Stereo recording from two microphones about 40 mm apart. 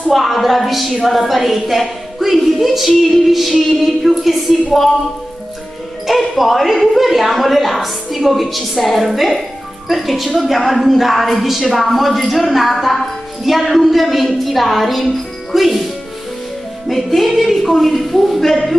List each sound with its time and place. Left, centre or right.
0.1 s a woman's voice: centre
6.0 s a woman's voice: centre
16.8 s a woman's voice: centre